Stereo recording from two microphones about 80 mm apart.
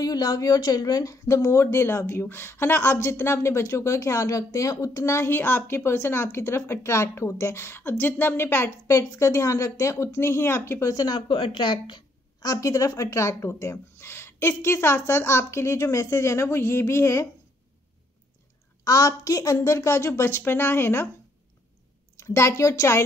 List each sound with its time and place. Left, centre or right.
0.0 s a woman's voice: left
10.9 s speech: left
12.4 s a woman's voice: left
18.9 s a woman's voice: left
22.1 s a woman's voice: left